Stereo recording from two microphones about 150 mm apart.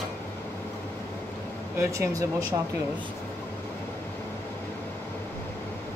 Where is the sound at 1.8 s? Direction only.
20° right (ahead or behind).